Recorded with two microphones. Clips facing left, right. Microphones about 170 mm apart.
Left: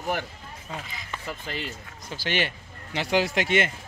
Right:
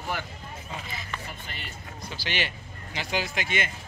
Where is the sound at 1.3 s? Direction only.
90° left.